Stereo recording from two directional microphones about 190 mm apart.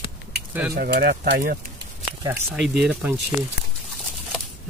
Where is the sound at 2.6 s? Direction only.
5° right (ahead or behind).